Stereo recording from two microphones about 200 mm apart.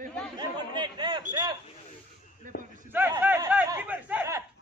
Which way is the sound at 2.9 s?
10° right (ahead or behind).